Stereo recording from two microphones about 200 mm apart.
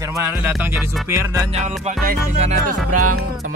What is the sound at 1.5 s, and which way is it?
Music, 35° right (ahead or behind).